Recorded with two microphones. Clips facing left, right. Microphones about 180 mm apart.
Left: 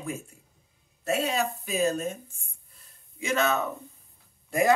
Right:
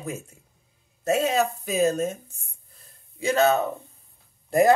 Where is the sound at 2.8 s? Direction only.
35° right (ahead or behind).